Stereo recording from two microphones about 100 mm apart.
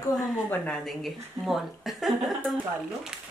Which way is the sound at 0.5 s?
10° left (ahead or behind).